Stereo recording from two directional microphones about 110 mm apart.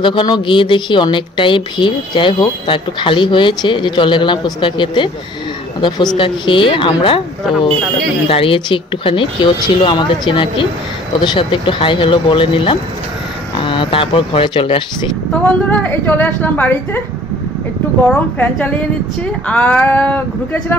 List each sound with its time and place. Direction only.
0.0 s a woman's voice: 50° left (ahead or behind)
8.3 s a woman's voice: 55° left (ahead or behind)
15.8 s a woman's voice: 15° left (ahead or behind)
18.0 s a woman's voice: 15° left (ahead or behind)